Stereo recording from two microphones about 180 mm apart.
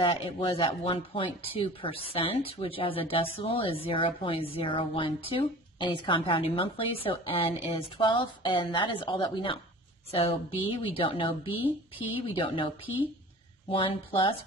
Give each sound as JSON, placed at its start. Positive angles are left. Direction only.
{"t": 0.0, "sound": "a woman's voice", "side_deg": 30}